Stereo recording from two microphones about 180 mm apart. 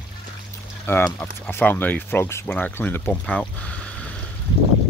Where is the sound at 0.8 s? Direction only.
10° left (ahead or behind).